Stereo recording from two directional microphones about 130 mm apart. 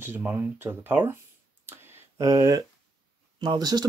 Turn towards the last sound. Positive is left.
turn(degrees=-30)  # may be behind; listen again after turning